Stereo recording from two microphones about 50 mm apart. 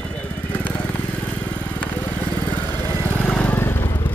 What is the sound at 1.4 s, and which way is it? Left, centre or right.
Vehicle, left.